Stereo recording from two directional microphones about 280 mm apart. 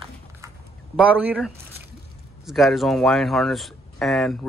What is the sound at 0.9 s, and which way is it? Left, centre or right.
Speech, centre.